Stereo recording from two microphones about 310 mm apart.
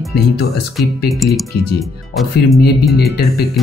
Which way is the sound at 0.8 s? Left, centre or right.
Centre.